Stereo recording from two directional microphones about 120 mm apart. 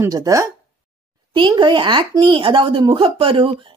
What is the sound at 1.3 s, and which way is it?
Speech, 45° right (ahead or behind).